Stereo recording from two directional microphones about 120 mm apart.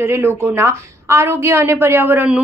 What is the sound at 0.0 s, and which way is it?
A woman's voice, 20° right (ahead or behind).